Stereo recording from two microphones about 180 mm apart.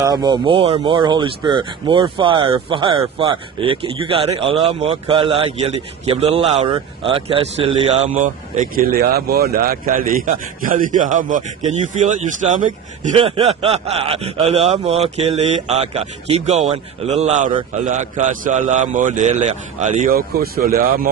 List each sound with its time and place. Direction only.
0.0 s a man's voice: 20° right (ahead or behind); by 13.1 s 45° right (ahead or behind)
13.1 s a man's voice: 35° right (ahead or behind)
20.1 s speech: 55° right (ahead or behind)